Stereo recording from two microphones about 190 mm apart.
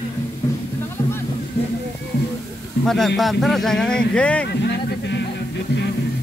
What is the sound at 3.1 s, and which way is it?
Speech, centre (ahead or behind).